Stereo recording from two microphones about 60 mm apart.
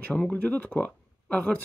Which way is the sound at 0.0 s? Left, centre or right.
Left.